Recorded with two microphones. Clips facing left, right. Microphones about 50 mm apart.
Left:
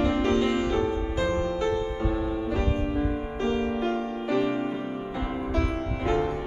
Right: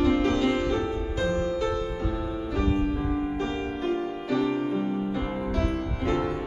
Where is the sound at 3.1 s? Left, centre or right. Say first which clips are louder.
Even; centre.